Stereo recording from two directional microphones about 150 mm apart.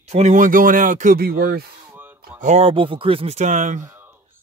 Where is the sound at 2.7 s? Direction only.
35° right (ahead or behind); by 3.8 s 55° right (ahead or behind).